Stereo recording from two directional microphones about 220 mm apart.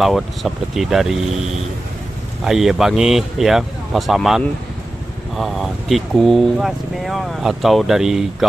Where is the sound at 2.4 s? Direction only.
Centre (ahead or behind).